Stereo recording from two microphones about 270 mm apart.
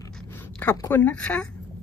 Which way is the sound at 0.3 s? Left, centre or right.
Centre.